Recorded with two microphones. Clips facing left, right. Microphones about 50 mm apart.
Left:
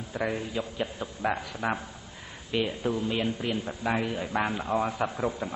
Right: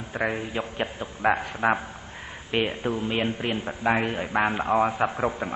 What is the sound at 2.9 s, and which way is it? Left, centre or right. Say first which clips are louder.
A man's voice: right 2 dB; right.